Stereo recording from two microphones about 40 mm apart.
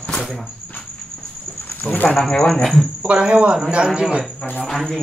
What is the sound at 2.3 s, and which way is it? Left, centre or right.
Speech, centre.